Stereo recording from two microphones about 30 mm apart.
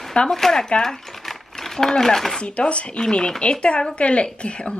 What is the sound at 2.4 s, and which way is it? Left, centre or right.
Speech, left.